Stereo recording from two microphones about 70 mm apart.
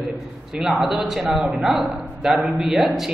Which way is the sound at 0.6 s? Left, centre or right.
Centre.